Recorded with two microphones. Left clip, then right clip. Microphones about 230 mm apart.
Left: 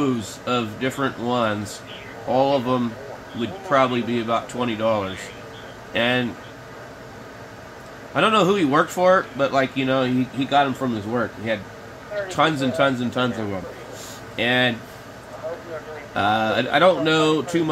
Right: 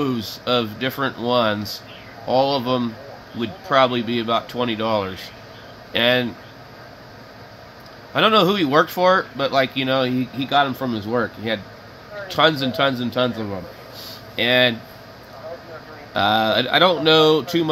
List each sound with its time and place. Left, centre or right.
0.5 s speech: right
8.1 s speech: right
14.3 s speech: centre
16.1 s speech: right